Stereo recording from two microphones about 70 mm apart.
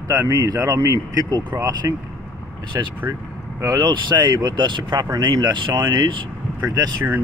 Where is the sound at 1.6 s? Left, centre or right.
Right.